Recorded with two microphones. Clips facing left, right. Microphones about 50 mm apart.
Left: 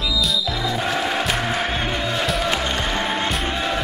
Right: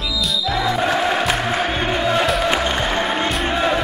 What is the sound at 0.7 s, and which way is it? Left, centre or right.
Music, centre.